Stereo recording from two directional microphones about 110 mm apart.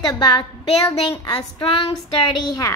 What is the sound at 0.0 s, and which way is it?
Speech, 35° left (ahead or behind).